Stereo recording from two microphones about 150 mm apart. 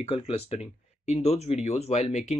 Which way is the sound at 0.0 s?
40° left (ahead or behind).